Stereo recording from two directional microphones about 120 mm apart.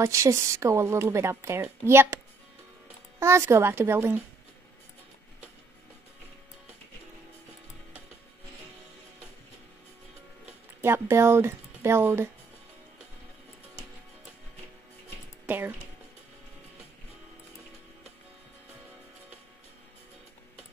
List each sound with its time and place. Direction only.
0.0 s speech: 25° right (ahead or behind)
3.2 s speech: 20° right (ahead or behind)
10.8 s speech: 20° right (ahead or behind)
15.4 s a sound: 15° right (ahead or behind)